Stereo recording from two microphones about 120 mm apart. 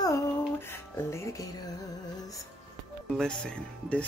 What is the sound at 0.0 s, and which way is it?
Music, 25° left (ahead or behind).